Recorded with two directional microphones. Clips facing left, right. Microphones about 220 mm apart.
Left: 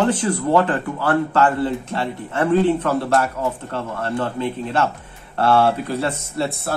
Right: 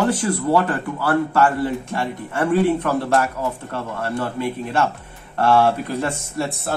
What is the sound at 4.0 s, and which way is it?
Speech, 10° right (ahead or behind).